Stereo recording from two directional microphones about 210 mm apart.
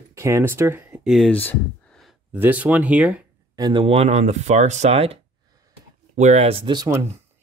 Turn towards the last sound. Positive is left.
turn(degrees=-20)  # may be behind; listen again after turning